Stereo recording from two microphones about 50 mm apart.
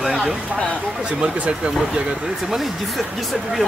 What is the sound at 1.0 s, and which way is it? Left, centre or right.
Speech, right.